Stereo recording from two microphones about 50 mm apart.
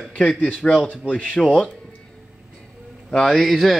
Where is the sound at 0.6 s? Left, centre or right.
Left.